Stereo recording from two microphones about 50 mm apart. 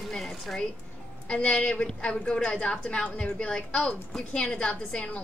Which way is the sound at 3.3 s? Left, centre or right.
Centre.